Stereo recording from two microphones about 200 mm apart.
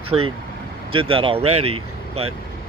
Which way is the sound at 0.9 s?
25° right (ahead or behind).